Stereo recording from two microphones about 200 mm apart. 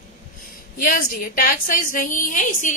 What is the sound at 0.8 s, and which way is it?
A woman's voice, 45° left (ahead or behind).